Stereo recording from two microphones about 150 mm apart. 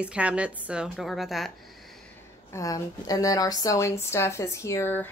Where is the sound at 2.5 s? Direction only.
25° left (ahead or behind).